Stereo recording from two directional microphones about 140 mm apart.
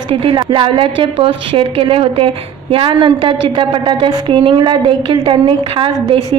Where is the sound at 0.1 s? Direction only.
40° right (ahead or behind).